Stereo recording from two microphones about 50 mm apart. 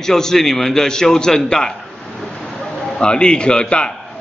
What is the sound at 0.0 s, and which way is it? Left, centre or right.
A man's voice, centre.